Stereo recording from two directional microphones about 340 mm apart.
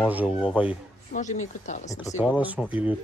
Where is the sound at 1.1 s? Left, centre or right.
Left.